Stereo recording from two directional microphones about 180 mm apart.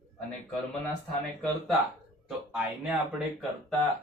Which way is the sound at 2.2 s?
5° right (ahead or behind).